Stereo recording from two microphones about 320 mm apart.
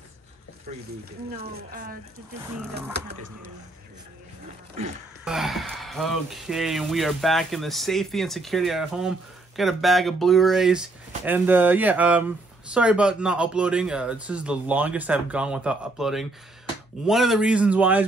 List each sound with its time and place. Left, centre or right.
1.3 s speech: right
5.2 s speech: centre